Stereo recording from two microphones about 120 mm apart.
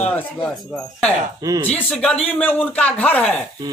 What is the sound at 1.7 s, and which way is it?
A man's voice, 10° left (ahead or behind).